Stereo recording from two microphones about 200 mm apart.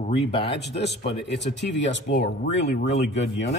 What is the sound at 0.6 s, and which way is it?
Speech, 55° left (ahead or behind).